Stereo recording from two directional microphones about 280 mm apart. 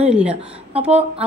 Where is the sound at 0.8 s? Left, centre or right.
Right.